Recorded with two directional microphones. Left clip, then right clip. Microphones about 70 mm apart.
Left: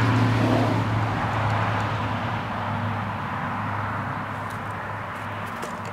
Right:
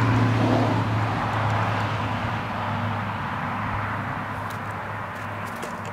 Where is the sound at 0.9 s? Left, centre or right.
Centre; by 4.5 s right.